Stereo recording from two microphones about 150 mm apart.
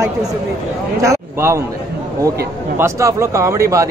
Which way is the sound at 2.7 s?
20° right (ahead or behind).